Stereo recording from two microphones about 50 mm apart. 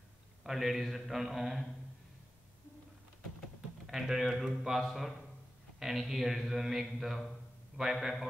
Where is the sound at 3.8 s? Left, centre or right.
Centre.